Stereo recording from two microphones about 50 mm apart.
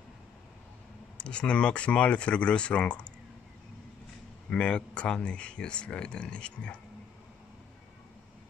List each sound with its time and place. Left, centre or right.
1.1 s speech: left
4.5 s speech: left